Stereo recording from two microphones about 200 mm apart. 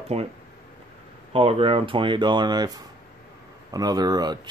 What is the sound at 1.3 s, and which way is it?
Speech, 30° right (ahead or behind).